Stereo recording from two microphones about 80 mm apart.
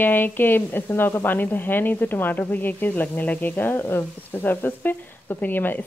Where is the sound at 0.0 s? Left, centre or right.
Left.